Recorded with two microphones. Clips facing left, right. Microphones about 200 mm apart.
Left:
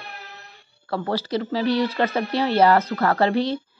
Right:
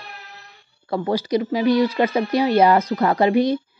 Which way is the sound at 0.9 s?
15° right (ahead or behind).